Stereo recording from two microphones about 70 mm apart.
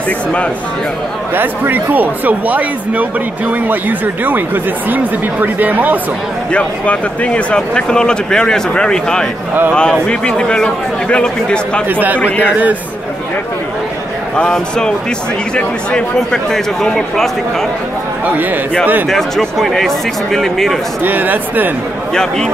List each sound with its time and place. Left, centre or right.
1.3 s speech: right
6.5 s speech: centre
11.9 s speech: right
12.2 s a man's voice: left
14.3 s speech: centre
18.2 s speech: right
19.0 s speech: centre
21.0 s speech: right
22.1 s speech: centre